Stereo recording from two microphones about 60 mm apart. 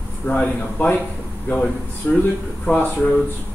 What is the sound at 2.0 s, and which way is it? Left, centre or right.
Speech, left.